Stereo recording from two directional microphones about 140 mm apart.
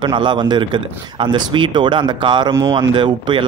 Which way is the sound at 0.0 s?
35° right (ahead or behind).